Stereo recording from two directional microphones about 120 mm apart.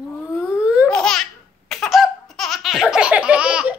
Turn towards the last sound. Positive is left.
turn(degrees=-10)  # may be behind; listen again after turning